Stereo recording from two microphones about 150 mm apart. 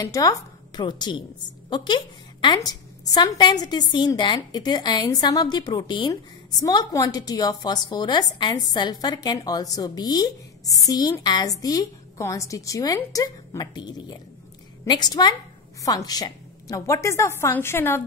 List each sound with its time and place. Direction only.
0.0 s a woman's voice: 25° left (ahead or behind)